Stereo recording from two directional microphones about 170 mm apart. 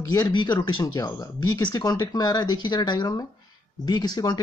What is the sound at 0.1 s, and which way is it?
Speech, 25° left (ahead or behind).